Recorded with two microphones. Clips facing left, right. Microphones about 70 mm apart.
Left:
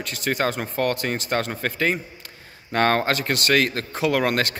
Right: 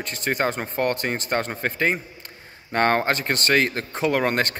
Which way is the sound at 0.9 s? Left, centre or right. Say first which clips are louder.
Even; right.